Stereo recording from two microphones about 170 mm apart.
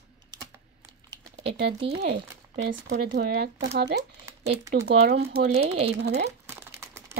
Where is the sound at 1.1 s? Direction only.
35° right (ahead or behind).